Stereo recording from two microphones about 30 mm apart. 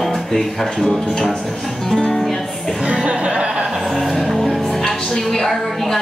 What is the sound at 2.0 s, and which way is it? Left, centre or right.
Music, left.